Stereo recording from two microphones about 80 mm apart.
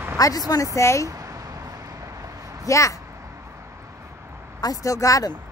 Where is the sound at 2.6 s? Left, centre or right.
Left.